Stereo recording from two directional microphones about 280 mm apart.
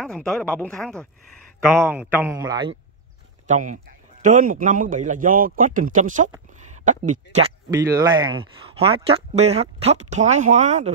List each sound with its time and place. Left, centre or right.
0.0 s speech: centre
1.9 s speech: centre
3.4 s speech: right
7.8 s speech: centre